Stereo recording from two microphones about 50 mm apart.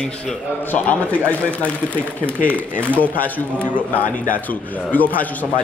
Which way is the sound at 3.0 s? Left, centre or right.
Left.